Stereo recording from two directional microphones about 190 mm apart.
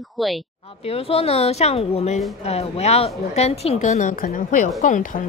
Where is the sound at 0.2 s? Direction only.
Centre (ahead or behind).